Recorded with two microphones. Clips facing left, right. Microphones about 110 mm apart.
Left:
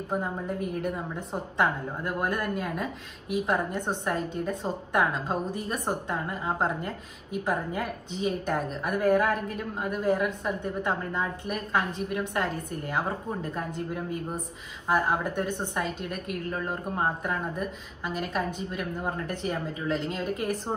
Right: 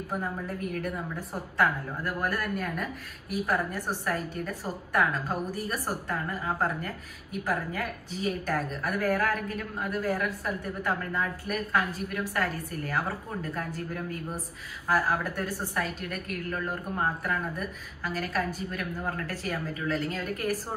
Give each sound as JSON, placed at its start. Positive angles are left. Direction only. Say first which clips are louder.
{"t": 0.1, "sound": "a woman's voice", "louder": "left 3 dB", "side_deg": 20}